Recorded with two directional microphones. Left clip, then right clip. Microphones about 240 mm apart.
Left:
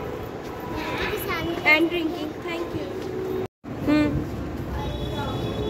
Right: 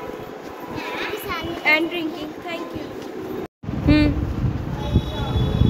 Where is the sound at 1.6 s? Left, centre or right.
Centre.